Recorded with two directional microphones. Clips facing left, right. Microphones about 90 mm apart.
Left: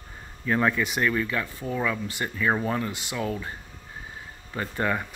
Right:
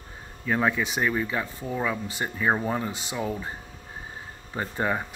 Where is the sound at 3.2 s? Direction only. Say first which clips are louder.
Left 1 dB; 15° right (ahead or behind).